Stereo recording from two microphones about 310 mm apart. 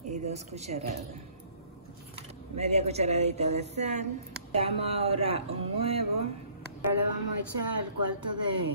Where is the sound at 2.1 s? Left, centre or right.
Centre.